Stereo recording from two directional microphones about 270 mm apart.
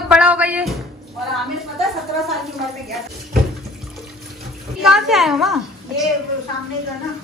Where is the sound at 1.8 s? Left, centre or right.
Centre.